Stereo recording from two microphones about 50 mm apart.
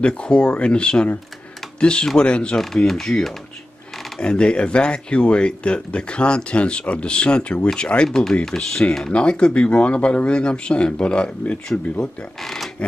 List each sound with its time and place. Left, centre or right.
0.0 s speech: left
2.6 s speech: centre
4.2 s speech: centre